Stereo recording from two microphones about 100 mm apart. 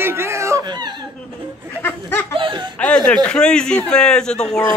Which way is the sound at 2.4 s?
60° right (ahead or behind).